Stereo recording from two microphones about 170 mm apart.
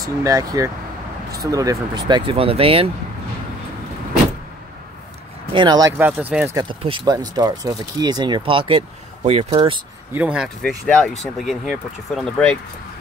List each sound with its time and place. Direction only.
0.0 s speech: 20° right (ahead or behind)
5.5 s speech: 25° right (ahead or behind)
5.9 s speech: 10° right (ahead or behind)
6.6 s speech: 30° right (ahead or behind)
10.1 s speech: 5° right (ahead or behind)
10.6 s speech: 5° left (ahead or behind)